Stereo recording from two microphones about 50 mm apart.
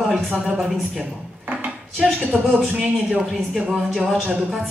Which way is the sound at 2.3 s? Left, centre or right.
Right.